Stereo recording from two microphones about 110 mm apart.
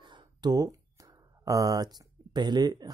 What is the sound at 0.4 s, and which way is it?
Speech, 35° right (ahead or behind).